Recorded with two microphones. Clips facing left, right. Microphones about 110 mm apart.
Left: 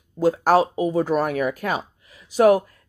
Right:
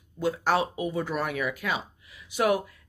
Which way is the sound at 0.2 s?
40° left (ahead or behind).